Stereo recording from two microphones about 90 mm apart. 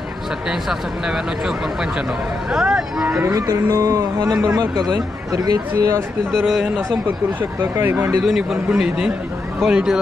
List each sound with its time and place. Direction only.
0.5 s speech: 5° right (ahead or behind)
3.2 s speech: 40° right (ahead or behind)
6.3 s speech: centre (ahead or behind)
7.8 s speech: 25° right (ahead or behind)
8.2 s speech: 5° right (ahead or behind)